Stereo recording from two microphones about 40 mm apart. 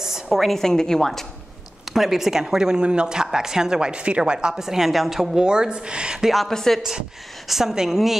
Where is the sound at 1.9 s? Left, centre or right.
Centre; by 4.5 s right.